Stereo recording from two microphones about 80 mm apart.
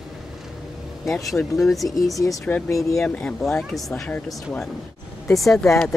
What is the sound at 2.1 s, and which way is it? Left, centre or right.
Speech, left.